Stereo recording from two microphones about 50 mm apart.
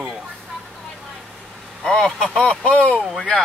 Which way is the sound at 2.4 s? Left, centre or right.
Left.